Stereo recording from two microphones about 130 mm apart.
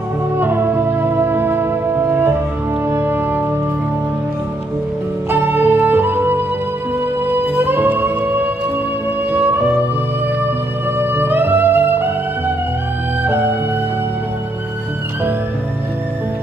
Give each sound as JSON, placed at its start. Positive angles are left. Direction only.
{"t": 0.4, "sound": "music", "side_deg": -15}
{"t": 5.3, "sound": "music", "side_deg": -15}
{"t": 11.0, "sound": "music", "side_deg": -15}
{"t": 13.2, "sound": "music", "side_deg": -15}